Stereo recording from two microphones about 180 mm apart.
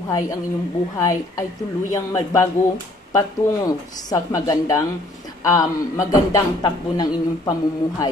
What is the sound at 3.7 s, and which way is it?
A man's voice, 20° left (ahead or behind).